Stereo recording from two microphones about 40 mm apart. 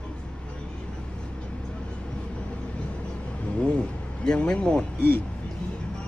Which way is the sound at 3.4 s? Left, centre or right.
Left.